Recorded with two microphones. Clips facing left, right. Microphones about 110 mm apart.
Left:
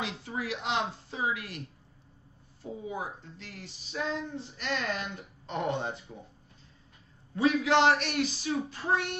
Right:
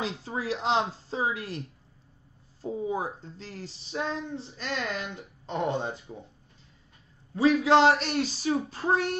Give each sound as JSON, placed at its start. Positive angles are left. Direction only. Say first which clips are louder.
{"t": 0.0, "sound": "speech", "louder": "right 3 dB", "side_deg": -35}
{"t": 2.6, "sound": "speech", "louder": "right 6 dB", "side_deg": -35}
{"t": 7.3, "sound": "speech", "louder": "right 4 dB", "side_deg": -30}